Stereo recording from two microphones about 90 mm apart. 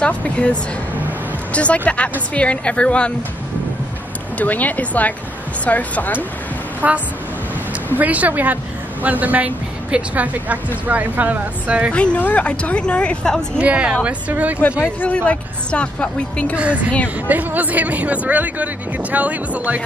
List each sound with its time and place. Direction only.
0.0 s speech: 10° left (ahead or behind)
4.4 s speech: 20° left (ahead or behind)
6.8 s speech: 20° right (ahead or behind)
8.0 s speech: 15° right (ahead or behind)
11.9 s speech: 15° left (ahead or behind)
13.6 s speech: 15° right (ahead or behind)
15.0 s speech: 15° left (ahead or behind)
16.5 s speech: 15° right (ahead or behind)